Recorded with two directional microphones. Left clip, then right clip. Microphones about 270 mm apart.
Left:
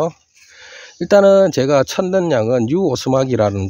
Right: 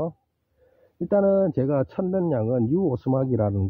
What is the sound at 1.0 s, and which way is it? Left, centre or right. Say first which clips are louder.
Speech: left 10 dB; centre.